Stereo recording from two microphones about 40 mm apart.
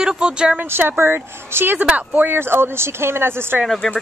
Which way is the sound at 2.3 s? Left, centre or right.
Right.